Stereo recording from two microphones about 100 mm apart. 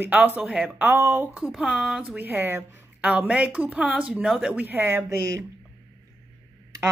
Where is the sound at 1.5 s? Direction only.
5° right (ahead or behind); by 3.1 s 20° right (ahead or behind).